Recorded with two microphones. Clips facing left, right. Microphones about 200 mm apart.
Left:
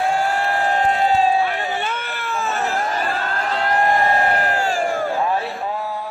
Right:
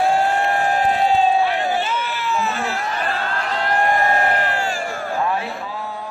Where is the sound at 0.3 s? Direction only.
20° right (ahead or behind).